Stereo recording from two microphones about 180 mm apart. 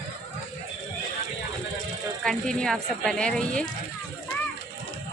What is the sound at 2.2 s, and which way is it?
Speech, 5° left (ahead or behind).